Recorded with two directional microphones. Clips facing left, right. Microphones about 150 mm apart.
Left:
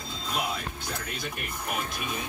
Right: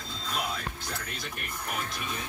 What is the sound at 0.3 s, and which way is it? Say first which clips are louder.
Music: left 2 dB; 10° left (ahead or behind).